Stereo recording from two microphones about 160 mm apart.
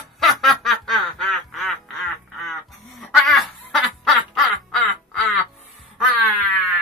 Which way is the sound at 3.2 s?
Centre (ahead or behind).